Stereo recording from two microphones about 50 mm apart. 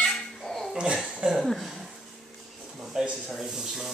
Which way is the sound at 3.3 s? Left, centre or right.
Centre.